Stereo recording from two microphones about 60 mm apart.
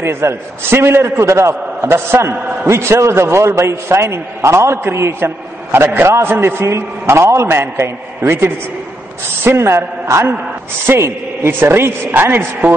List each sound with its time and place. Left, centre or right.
0.0 s a man's voice: right
6.6 s a man's voice: right
7.4 s a woman's voice: right